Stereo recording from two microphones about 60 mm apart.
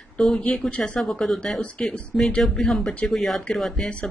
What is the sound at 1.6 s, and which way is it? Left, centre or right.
Speech, left.